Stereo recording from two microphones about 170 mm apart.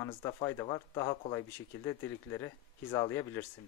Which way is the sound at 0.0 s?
20° left (ahead or behind).